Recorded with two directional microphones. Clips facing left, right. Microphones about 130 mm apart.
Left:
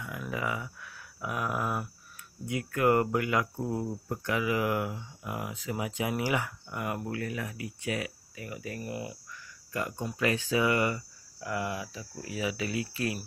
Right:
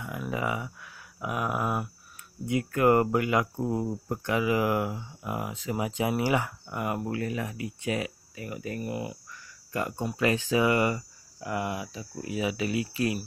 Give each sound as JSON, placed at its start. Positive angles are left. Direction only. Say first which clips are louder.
{"t": 0.3, "sound": "speech", "louder": "right 3 dB", "side_deg": -25}